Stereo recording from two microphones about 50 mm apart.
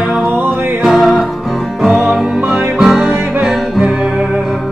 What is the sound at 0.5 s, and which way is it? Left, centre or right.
Music, right.